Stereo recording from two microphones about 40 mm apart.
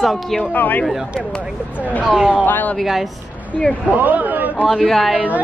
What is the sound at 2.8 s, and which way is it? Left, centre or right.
Speech, centre.